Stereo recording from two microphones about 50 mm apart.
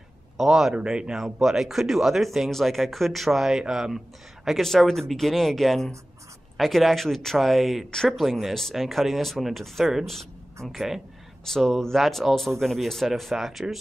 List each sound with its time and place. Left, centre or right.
0.4 s speech: centre
0.7 s speech: centre
4.5 s speech: centre
7.9 s speech: centre
8.2 s speech: centre